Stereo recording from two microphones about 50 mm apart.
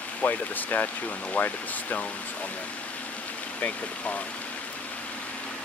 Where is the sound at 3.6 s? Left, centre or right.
Left.